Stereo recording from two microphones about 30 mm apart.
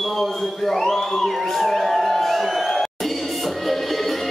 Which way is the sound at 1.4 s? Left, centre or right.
Centre.